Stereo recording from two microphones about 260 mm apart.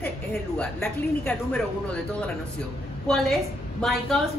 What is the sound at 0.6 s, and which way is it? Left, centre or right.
A woman's voice, centre.